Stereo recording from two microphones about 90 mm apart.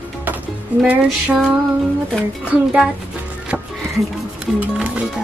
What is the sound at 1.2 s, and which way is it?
Speech, 5° right (ahead or behind).